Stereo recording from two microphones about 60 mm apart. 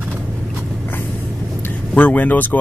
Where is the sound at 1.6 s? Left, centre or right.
Left.